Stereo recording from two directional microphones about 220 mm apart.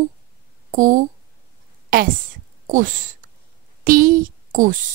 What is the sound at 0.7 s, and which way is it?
Speech, 35° right (ahead or behind).